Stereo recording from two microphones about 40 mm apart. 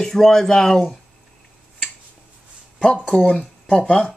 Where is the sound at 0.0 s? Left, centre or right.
Centre.